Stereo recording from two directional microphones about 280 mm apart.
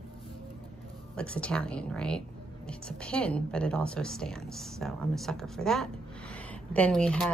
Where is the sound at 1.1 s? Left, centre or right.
Centre.